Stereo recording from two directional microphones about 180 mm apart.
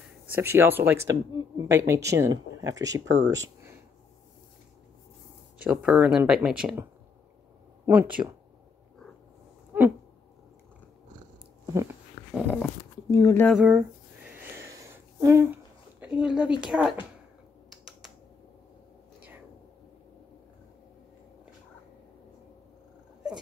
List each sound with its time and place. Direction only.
0.3 s speech: 15° right (ahead or behind)
5.6 s speech: 5° right (ahead or behind)
9.7 s a sound: 10° right (ahead or behind)
11.6 s a sound: 15° right (ahead or behind)
12.4 s speech: 5° left (ahead or behind)
13.1 s speech: 15° left (ahead or behind)
13.5 s speech: 5° right (ahead or behind)
14.3 s a sound: 15° right (ahead or behind)
16.6 s speech: 5° right (ahead or behind)
17.6 s typing: centre (ahead or behind)